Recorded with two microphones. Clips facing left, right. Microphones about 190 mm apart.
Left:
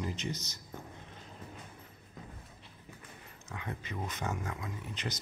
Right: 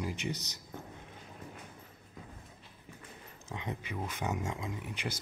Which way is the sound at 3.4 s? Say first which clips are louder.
Right 2 dB; 20° right (ahead or behind).